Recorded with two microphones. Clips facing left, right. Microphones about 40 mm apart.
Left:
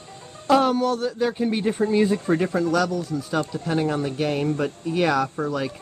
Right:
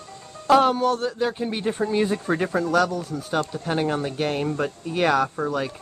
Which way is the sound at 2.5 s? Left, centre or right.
Right.